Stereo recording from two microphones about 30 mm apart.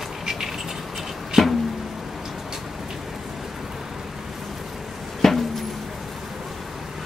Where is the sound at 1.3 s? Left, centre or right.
Centre.